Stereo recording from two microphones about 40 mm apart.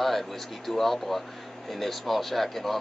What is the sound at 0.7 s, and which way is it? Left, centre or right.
Speech, centre.